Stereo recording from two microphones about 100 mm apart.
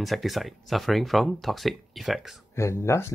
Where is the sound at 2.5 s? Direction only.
30° left (ahead or behind).